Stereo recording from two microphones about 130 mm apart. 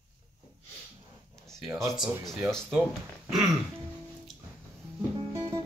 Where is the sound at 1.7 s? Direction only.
20° right (ahead or behind).